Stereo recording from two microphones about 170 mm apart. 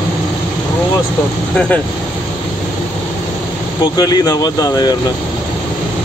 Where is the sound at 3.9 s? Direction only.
20° left (ahead or behind).